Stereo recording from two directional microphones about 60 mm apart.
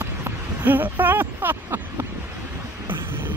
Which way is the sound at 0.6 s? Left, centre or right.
Right.